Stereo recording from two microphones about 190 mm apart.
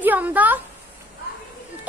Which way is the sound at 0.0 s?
10° right (ahead or behind).